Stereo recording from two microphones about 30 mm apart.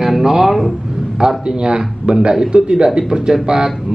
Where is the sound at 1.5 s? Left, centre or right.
Right.